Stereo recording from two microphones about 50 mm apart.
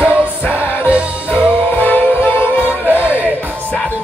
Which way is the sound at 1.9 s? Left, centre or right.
Left.